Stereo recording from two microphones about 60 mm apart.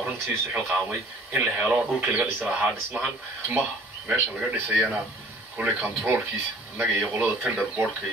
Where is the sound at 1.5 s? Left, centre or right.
Right.